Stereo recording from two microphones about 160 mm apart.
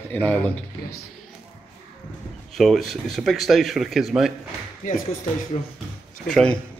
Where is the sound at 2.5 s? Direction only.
Centre (ahead or behind).